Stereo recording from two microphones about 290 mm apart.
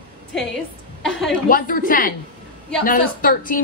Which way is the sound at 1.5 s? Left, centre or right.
Left.